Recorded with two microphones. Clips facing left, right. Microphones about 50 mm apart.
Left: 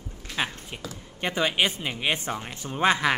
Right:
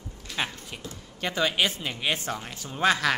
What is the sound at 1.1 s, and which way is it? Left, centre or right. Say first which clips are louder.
Speech: left 1 dB; left.